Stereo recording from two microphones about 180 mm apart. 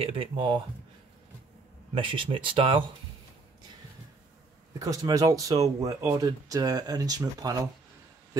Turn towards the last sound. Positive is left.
turn(degrees=-20)  # may be behind; listen again after turning